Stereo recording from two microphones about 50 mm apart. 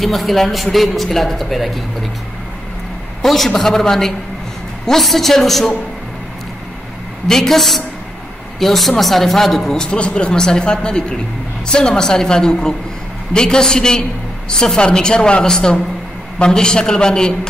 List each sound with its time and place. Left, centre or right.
0.0 s a man's voice: centre
3.2 s a man's voice: centre
7.2 s a man's voice: centre